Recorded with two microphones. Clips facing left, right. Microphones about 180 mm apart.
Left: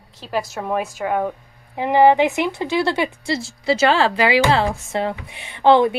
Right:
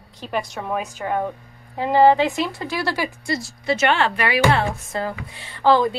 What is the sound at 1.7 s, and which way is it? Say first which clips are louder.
Speech: left 1 dB; 15° left (ahead or behind).